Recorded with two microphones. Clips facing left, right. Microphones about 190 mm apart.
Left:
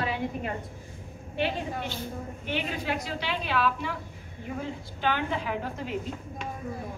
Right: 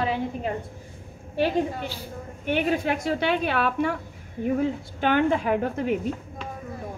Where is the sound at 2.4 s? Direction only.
50° right (ahead or behind).